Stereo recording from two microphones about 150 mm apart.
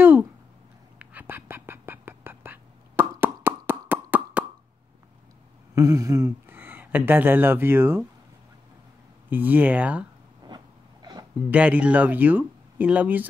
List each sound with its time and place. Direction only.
0.0 s a sound: 15° right (ahead or behind)
0.9 s duck: 10° right (ahead or behind)
5.8 s speech: 20° right (ahead or behind)
9.3 s speech: 10° right (ahead or behind)
10.4 s a sound: 30° right (ahead or behind)
11.5 s speech: 10° right (ahead or behind)